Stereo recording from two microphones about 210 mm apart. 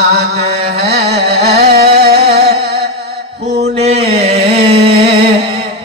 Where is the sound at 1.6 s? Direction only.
50° right (ahead or behind).